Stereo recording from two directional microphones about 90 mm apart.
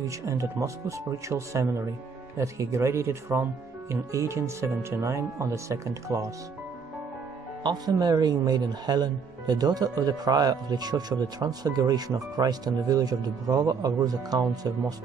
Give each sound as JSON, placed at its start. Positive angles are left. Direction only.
{"t": 0.0, "sound": "speech", "side_deg": -35}
{"t": 7.6, "sound": "speech", "side_deg": -50}